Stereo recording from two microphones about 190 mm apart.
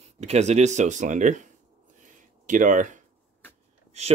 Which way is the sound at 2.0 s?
40° right (ahead or behind).